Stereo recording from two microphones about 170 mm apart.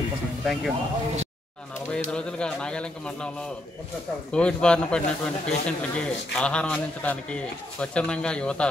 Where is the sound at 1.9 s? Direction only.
5° left (ahead or behind).